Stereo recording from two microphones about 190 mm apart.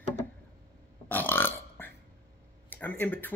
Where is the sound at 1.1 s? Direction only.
10° left (ahead or behind).